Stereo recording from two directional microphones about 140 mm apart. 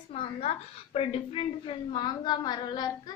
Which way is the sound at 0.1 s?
45° left (ahead or behind).